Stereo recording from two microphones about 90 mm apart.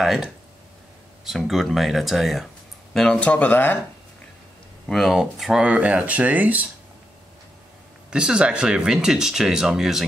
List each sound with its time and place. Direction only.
1.2 s speech: centre (ahead or behind); by 3.7 s 20° left (ahead or behind)
4.8 s speech: centre (ahead or behind); by 6.7 s 15° right (ahead or behind)
8.1 s speech: 10° right (ahead or behind)